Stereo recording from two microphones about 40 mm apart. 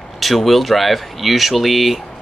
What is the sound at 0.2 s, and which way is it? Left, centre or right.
Speech, centre.